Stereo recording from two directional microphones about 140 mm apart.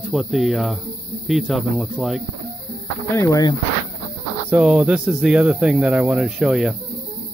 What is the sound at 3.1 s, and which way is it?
Speech, 20° left (ahead or behind).